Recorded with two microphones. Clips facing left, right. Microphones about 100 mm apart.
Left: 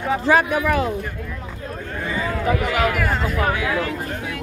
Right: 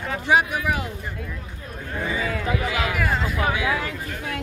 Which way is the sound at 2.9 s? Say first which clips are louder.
Left 2 dB; centre (ahead or behind).